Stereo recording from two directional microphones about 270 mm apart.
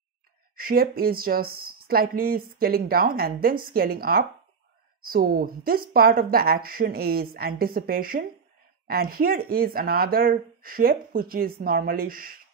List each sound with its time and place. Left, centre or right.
0.6 s speech: right